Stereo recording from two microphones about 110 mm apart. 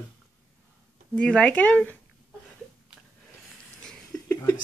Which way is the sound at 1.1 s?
5° left (ahead or behind).